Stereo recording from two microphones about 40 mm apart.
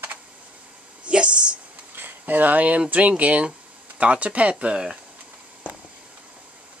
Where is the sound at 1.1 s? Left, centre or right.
Right.